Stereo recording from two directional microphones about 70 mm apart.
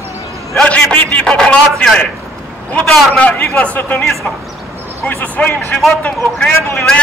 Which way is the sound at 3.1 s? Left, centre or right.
Centre.